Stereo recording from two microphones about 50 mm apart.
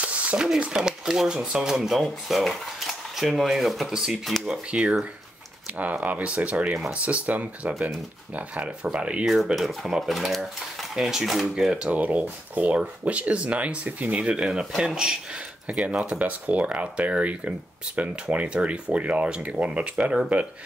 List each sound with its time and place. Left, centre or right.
0.0 s a sound: right
0.6 s speech: centre
1.8 s speech: centre
4.6 s speech: right
9.2 s speech: centre
11.8 s speech: right